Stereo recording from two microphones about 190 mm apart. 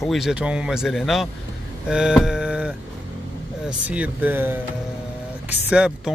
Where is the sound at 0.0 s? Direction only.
Centre (ahead or behind).